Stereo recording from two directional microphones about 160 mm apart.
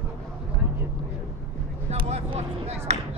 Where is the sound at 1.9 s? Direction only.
35° right (ahead or behind).